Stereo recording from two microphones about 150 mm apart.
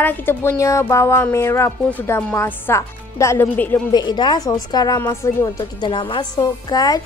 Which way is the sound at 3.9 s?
30° left (ahead or behind).